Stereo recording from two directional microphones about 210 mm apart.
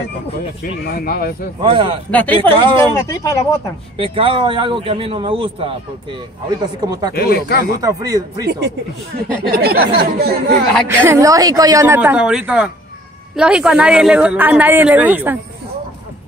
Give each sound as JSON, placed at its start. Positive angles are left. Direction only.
{"t": 0.8, "sound": "speech", "side_deg": 45}
{"t": 1.6, "sound": "speech", "side_deg": -25}
{"t": 2.0, "sound": "speech", "side_deg": 5}
{"t": 2.5, "sound": "speech", "side_deg": -25}
{"t": 2.9, "sound": "speech", "side_deg": 15}
{"t": 3.9, "sound": "speech", "side_deg": -25}
{"t": 6.8, "sound": "a woman's voice", "side_deg": -15}
{"t": 7.2, "sound": "speech", "side_deg": 50}
{"t": 7.8, "sound": "a woman's voice", "side_deg": -15}
{"t": 8.5, "sound": "speech", "side_deg": -50}
{"t": 10.9, "sound": "a woman's voice", "side_deg": -10}